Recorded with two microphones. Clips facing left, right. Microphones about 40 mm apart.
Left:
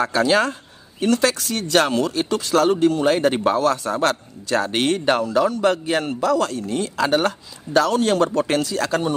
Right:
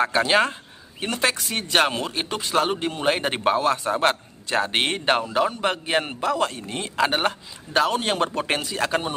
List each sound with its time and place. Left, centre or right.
0.0 s speech: right